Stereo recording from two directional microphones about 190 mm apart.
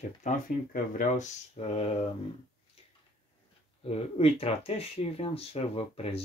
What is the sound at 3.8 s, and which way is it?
Speech, 30° left (ahead or behind).